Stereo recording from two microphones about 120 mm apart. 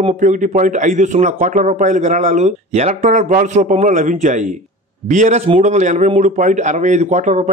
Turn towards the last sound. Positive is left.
turn(degrees=-75)  # may be behind; listen again after turning